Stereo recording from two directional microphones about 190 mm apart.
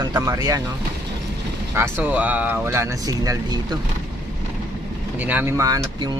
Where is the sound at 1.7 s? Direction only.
15° right (ahead or behind).